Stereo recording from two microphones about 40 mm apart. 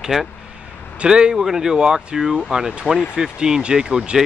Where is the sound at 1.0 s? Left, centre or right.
Right.